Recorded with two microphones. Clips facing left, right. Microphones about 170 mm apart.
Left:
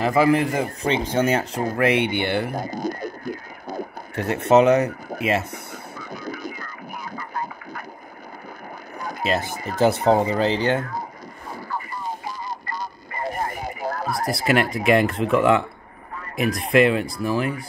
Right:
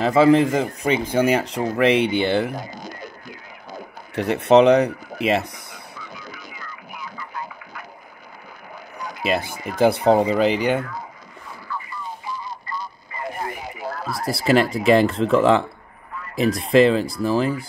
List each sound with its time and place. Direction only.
0.0 s speech: 25° right (ahead or behind)
2.4 s speech: 50° left (ahead or behind)
4.1 s speech: 20° right (ahead or behind)
5.7 s a sound: 45° left (ahead or behind)
9.4 s speech: 45° left (ahead or behind)
10.0 s speech: 20° right (ahead or behind)
11.6 s a sound: 40° left (ahead or behind)
14.3 s speech: 30° right (ahead or behind)